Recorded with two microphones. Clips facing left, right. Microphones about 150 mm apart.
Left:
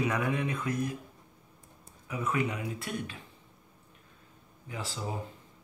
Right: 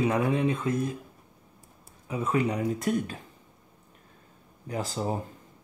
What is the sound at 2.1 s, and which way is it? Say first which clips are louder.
Speech: right 5 dB; 30° right (ahead or behind).